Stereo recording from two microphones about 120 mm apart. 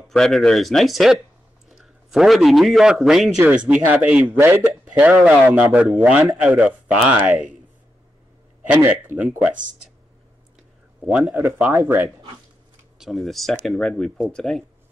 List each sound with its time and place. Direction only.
0.1 s a man's voice: centre (ahead or behind)
8.6 s speech: 15° right (ahead or behind)
11.0 s a man's voice: 5° right (ahead or behind)
11.3 s speech: 20° right (ahead or behind)
13.0 s speech: centre (ahead or behind)